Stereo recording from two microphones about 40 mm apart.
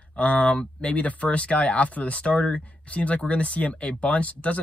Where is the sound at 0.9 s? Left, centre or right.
Left.